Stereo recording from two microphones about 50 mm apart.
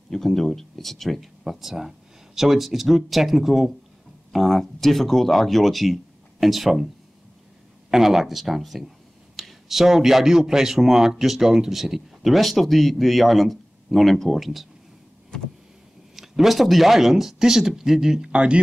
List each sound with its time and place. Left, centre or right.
0.1 s speech: centre
7.9 s speech: centre
16.2 s speech: centre
18.3 s speech: right